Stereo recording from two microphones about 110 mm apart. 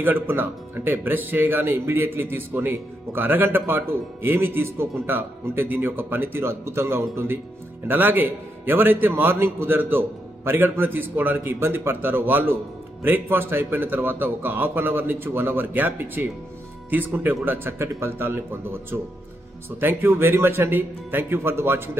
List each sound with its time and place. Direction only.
0.0 s speech: 20° right (ahead or behind)